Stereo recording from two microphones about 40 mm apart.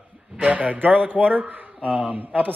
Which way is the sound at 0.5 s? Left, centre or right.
Right.